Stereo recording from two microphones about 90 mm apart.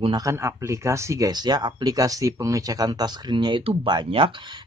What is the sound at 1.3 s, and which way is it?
Speech, 50° right (ahead or behind).